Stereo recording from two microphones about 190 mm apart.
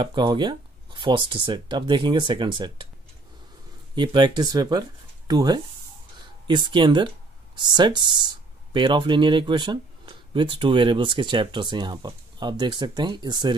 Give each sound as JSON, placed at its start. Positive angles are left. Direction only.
{"t": 0.0, "sound": "speech", "side_deg": -25}
{"t": 3.9, "sound": "speech", "side_deg": -25}